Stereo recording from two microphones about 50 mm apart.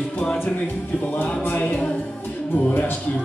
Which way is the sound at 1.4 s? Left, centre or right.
Left.